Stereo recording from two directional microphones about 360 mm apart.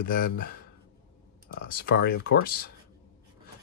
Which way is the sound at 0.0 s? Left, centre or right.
Left.